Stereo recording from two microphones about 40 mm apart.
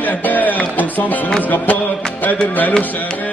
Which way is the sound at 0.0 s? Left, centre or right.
Left.